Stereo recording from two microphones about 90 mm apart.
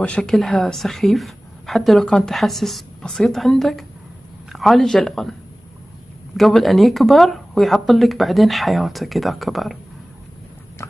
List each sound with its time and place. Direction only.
0.0 s a woman's voice: 10° left (ahead or behind)
6.3 s a woman's voice: centre (ahead or behind)
10.8 s clip-clop: 30° left (ahead or behind)